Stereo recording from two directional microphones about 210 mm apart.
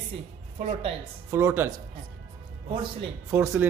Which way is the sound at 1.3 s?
10° right (ahead or behind).